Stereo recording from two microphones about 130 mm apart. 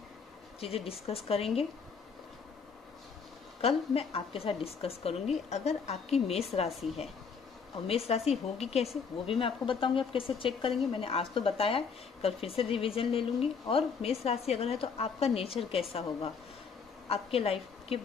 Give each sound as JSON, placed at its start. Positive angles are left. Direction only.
{"t": 0.6, "sound": "speech", "side_deg": 50}
{"t": 3.6, "sound": "speech", "side_deg": 50}
{"t": 7.8, "sound": "speech", "side_deg": 50}
{"t": 17.1, "sound": "speech", "side_deg": 50}